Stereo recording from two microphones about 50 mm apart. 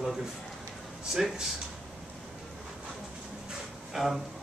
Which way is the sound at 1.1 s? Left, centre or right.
Centre.